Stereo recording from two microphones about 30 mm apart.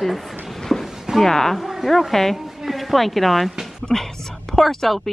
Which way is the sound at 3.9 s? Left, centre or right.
Centre.